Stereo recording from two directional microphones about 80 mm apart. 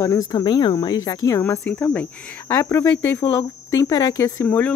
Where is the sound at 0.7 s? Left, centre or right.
Left.